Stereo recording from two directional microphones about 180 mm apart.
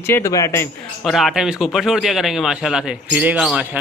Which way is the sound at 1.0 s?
Centre (ahead or behind).